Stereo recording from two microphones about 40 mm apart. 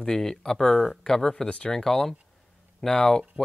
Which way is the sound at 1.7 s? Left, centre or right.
Centre.